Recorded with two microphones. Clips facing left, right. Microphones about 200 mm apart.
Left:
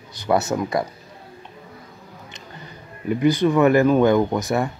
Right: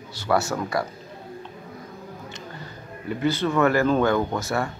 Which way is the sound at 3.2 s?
15° left (ahead or behind).